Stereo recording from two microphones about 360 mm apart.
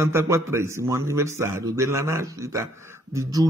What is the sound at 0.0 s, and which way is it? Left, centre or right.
Speech, centre.